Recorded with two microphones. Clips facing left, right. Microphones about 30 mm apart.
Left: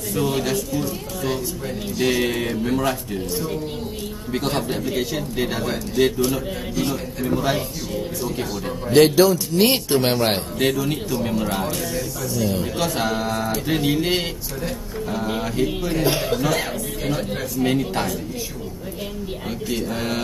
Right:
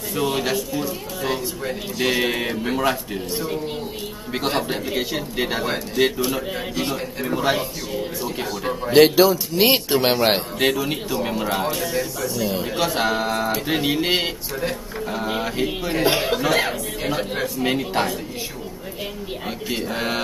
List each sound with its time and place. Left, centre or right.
0.1 s speech: centre
19.7 s speech: right